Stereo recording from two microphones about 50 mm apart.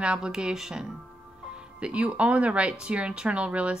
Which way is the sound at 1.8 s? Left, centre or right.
Right.